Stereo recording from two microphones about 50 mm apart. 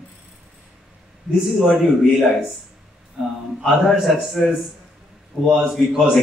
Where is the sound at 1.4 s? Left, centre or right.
Centre.